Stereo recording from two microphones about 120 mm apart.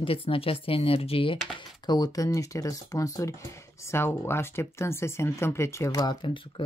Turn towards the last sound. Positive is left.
turn(degrees=40)  # may be behind; listen again after turning